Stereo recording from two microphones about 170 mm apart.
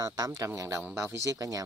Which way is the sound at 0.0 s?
20° right (ahead or behind).